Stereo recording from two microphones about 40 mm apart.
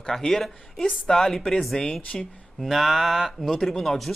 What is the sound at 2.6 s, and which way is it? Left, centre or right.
Speech, centre.